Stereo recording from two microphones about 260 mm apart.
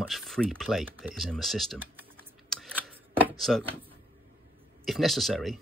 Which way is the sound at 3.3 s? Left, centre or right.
Centre.